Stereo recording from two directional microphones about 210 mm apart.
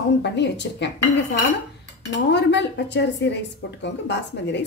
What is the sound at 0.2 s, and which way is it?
Speech, 55° left (ahead or behind).